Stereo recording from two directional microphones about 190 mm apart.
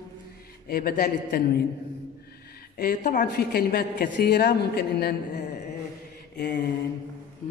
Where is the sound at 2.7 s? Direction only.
50° left (ahead or behind).